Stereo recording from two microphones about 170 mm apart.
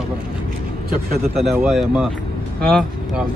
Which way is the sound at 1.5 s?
5° right (ahead or behind).